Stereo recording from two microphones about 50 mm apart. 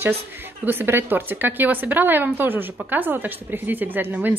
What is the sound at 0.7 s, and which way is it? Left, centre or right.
A woman's voice, right.